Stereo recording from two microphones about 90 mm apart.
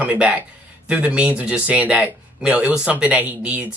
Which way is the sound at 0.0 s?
15° right (ahead or behind).